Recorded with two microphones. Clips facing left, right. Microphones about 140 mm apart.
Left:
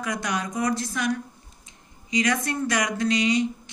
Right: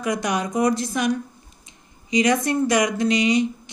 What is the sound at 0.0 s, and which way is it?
Speech, 15° right (ahead or behind).